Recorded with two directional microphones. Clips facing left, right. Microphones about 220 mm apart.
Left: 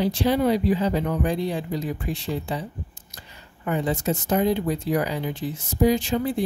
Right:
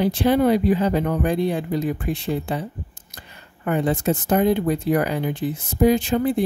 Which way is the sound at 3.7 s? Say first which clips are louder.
Right 4 dB; 55° right (ahead or behind).